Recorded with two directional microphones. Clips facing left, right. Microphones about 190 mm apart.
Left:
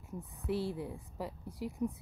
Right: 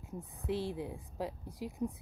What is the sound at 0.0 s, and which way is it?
Speech, 20° right (ahead or behind).